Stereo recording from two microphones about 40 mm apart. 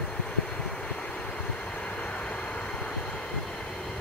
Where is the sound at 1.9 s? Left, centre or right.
Left.